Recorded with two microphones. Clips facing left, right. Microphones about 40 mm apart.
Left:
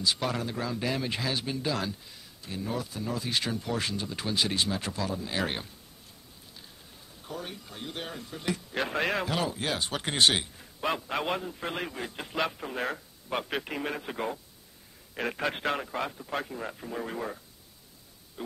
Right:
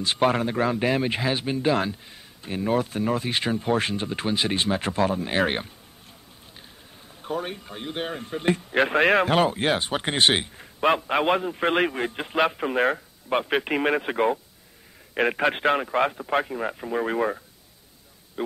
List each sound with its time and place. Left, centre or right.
0.0 s speech: right
7.2 s speech: right
11.5 s speech: right